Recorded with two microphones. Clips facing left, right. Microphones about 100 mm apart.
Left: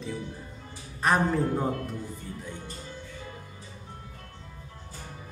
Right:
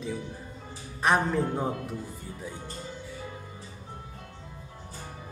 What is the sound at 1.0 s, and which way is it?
Speech, centre (ahead or behind).